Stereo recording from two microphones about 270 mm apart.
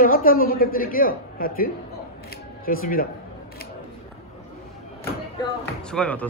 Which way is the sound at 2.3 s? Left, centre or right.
Left.